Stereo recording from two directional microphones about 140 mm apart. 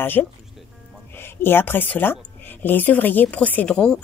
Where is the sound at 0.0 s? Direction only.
15° left (ahead or behind).